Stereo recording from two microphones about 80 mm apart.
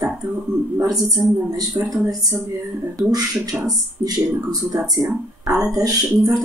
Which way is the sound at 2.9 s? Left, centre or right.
Right.